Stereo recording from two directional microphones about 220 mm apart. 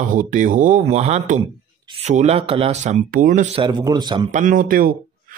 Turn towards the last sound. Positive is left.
turn(degrees=-40)  # may be behind; listen again after turning